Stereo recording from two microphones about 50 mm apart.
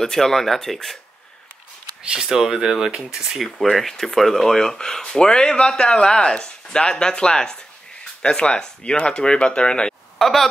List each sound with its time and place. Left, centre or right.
0.0 s speech: centre
2.2 s speech: centre
3.5 s speech: centre
10.1 s speech: centre